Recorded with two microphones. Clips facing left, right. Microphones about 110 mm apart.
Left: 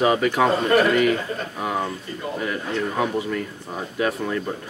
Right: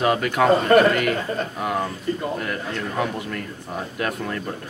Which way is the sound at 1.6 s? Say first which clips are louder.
Left 1 dB; centre (ahead or behind).